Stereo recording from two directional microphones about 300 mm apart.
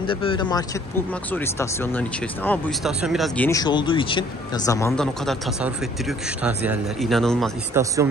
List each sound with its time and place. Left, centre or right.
0.0 s speech: centre
7.8 s speech: centre